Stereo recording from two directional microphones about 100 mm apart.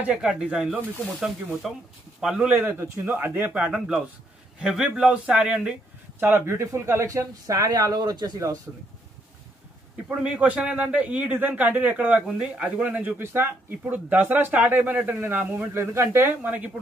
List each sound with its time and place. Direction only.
0.0 s a man's voice: 10° right (ahead or behind)
6.1 s speech: 20° right (ahead or behind)
10.0 s a man's voice: 15° right (ahead or behind)